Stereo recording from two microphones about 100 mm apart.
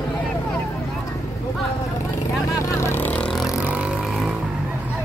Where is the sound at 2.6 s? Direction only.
25° left (ahead or behind).